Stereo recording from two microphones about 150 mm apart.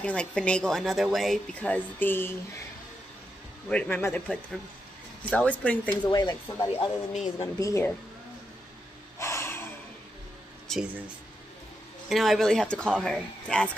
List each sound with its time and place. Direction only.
0.0 s a woman's voice: 5° left (ahead or behind)
3.6 s a woman's voice: 5° left (ahead or behind)
6.0 s speech: 30° left (ahead or behind)
7.1 s speech: 45° left (ahead or behind)
7.5 s speech: 20° left (ahead or behind)
9.2 s snort: 15° left (ahead or behind)
10.7 s speech: 5° left (ahead or behind)
12.1 s speech: centre (ahead or behind)